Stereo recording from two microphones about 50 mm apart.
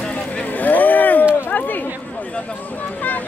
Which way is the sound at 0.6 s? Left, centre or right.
Left.